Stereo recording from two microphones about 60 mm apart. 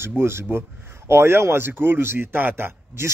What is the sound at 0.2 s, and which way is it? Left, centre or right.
Speech, right.